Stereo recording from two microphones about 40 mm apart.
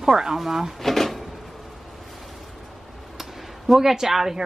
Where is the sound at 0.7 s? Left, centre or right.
Centre.